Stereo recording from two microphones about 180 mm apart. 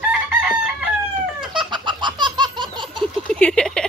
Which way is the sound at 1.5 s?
25° right (ahead or behind).